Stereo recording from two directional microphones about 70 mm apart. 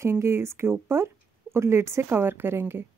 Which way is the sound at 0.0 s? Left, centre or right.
Right.